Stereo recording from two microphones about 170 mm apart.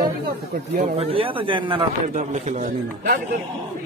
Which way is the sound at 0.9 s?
35° right (ahead or behind).